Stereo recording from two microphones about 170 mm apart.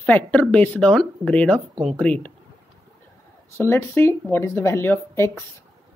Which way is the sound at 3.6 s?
15° left (ahead or behind).